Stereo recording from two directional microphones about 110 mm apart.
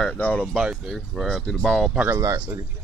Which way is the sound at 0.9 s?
Centre (ahead or behind).